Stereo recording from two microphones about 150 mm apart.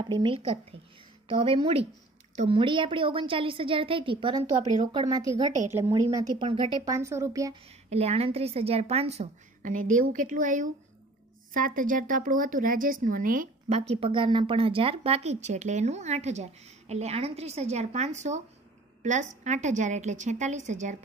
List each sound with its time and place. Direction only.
0.0 s a woman's voice: 30° right (ahead or behind)
6.1 s a woman's voice: 30° right (ahead or behind)
6.8 s a woman's voice: 20° right (ahead or behind)
7.9 s speech: 45° right (ahead or behind)
9.6 s a woman's voice: 60° right (ahead or behind)
13.7 s speech: 45° right (ahead or behind)